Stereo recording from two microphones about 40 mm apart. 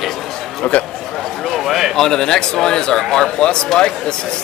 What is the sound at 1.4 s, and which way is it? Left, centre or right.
Speech, centre.